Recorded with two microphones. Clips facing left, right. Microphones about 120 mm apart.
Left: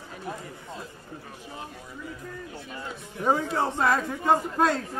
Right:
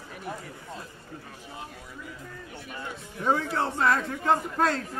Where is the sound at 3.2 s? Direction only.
15° left (ahead or behind).